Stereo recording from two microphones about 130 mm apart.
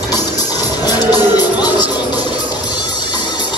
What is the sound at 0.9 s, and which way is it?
Music, 30° left (ahead or behind).